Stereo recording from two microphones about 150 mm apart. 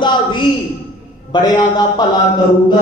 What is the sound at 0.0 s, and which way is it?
A man's voice, 30° left (ahead or behind).